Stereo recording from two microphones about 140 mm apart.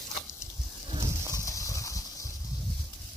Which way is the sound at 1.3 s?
20° left (ahead or behind).